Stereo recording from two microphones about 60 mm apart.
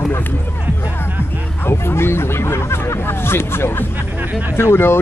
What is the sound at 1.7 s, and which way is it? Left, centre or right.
Speech, left.